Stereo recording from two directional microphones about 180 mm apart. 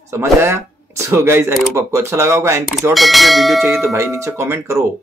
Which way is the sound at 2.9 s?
Centre (ahead or behind).